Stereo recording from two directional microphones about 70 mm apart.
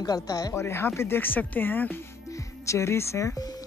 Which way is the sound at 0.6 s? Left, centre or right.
Left.